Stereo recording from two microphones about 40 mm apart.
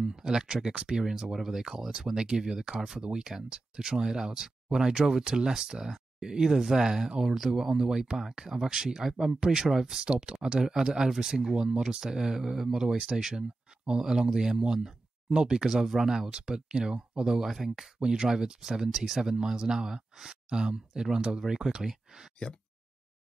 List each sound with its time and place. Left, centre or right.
0.0 s speech: centre
12.8 s speech: right
13.1 s speech: centre
15.7 s speech: centre
19.1 s speech: centre